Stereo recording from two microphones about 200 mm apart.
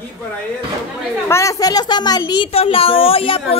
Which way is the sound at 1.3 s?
15° left (ahead or behind).